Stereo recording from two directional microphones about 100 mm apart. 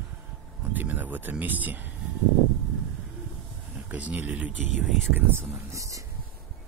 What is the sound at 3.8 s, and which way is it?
Speech, 15° right (ahead or behind).